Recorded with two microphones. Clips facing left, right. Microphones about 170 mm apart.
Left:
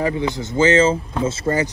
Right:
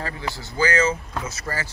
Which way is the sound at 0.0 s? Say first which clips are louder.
Left 10 dB; 20° left (ahead or behind).